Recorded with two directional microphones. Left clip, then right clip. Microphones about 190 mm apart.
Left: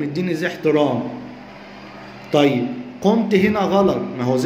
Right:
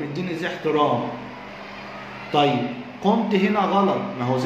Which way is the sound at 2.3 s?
50° left (ahead or behind).